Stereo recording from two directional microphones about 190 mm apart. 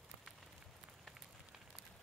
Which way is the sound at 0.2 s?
Centre (ahead or behind).